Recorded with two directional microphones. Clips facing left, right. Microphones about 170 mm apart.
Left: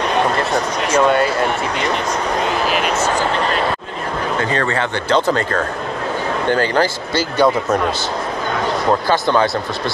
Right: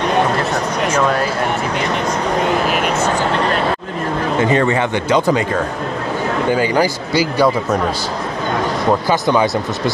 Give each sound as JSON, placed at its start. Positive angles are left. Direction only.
{"t": 4.4, "sound": "speech", "side_deg": -20}